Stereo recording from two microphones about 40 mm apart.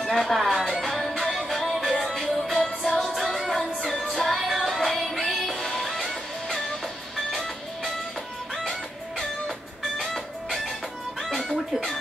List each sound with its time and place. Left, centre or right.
0.1 s speech: centre
0.5 s music: centre
3.5 s music: centre
4.1 s music: centre
7.2 s music: centre
9.9 s music: centre